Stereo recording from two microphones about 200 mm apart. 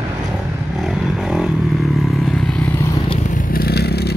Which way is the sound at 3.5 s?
50° left (ahead or behind).